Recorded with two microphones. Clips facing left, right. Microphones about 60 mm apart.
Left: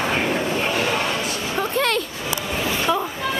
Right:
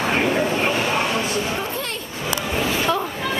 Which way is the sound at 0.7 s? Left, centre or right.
Centre.